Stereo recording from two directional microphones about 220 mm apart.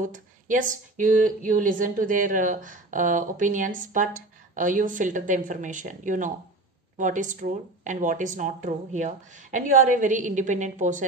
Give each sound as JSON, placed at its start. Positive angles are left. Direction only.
{"t": 0.0, "sound": "speech", "side_deg": -35}